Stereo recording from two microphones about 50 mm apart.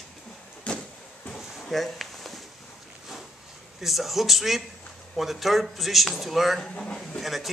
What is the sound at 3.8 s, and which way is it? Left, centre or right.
Speech, centre.